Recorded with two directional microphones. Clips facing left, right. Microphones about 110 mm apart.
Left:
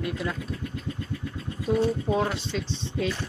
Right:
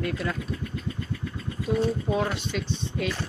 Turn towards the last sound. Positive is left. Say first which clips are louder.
# left 1 dB
turn(degrees=30)  # may be behind; listen again after turning